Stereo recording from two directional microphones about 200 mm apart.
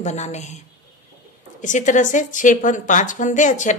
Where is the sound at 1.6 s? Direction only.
40° left (ahead or behind).